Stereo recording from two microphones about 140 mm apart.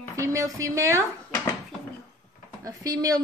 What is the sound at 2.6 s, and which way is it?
Speech, 25° right (ahead or behind).